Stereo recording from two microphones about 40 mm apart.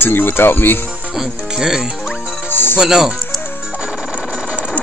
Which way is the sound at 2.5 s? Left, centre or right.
Left.